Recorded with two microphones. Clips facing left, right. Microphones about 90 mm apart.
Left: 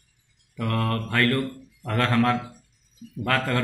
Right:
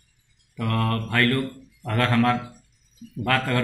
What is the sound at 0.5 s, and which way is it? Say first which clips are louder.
Speech: right 1 dB; 20° left (ahead or behind).